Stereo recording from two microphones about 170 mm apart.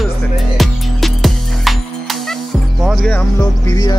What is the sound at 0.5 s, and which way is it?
Music, centre (ahead or behind).